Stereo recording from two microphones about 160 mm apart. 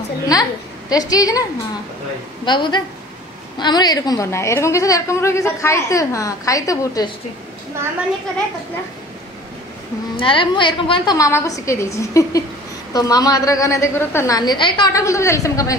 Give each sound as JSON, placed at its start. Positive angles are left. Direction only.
{"t": 0.3, "sound": "a woman's voice", "side_deg": 25}
{"t": 2.4, "sound": "a woman's voice", "side_deg": 30}
{"t": 10.1, "sound": "a woman's voice", "side_deg": 35}
{"t": 11.1, "sound": "a woman's voice", "side_deg": 20}